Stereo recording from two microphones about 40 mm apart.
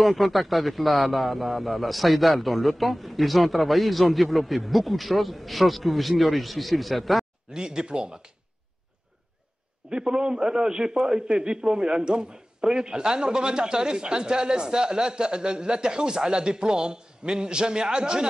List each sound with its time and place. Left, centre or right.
0.0 s a man's voice: centre
7.5 s a man's voice: right
9.8 s a man's voice: right